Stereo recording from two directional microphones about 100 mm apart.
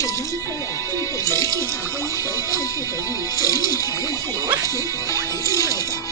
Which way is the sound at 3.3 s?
35° left (ahead or behind).